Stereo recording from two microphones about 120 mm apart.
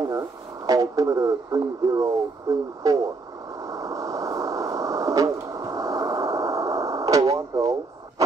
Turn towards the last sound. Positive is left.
turn(degrees=-30)  # may be behind; listen again after turning